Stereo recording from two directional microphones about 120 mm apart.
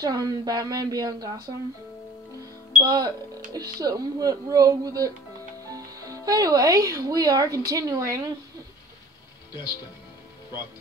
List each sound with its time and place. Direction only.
0.0 s speech: 30° right (ahead or behind)
2.8 s speech: 30° right (ahead or behind)
9.5 s speech: 40° left (ahead or behind)